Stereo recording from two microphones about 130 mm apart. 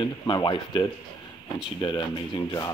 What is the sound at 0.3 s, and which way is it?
Speech, 35° left (ahead or behind).